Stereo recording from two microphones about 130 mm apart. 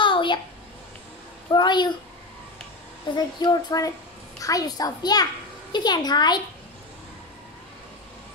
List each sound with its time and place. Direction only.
0.0 s a sound: 40° left (ahead or behind)
1.5 s a child's voice: 35° left (ahead or behind)
3.2 s a child's voice: 35° left (ahead or behind)